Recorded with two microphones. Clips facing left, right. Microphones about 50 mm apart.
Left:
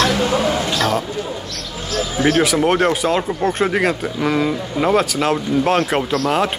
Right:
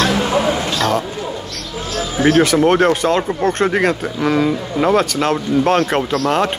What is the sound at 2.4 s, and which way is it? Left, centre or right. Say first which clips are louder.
Speech: right 3 dB; centre.